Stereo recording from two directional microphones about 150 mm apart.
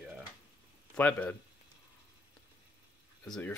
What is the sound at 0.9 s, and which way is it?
Speech, 10° left (ahead or behind).